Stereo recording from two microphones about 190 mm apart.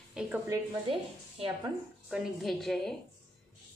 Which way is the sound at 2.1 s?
Centre (ahead or behind).